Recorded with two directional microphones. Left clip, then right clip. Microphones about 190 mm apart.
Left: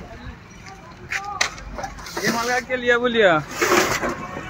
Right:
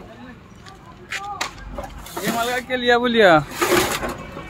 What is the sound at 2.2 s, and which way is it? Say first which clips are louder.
Speech: left 1 dB; 60° right (ahead or behind).